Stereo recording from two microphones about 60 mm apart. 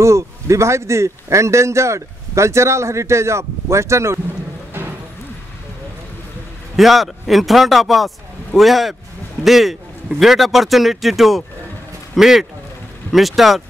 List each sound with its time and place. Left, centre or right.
0.0 s speech: right
4.7 s a sound: right
6.8 s a man's voice: centre